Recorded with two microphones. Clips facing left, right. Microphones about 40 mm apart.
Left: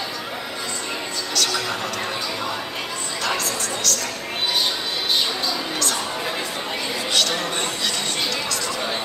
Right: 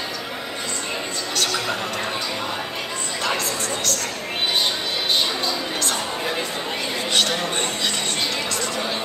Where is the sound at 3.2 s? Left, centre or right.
Right.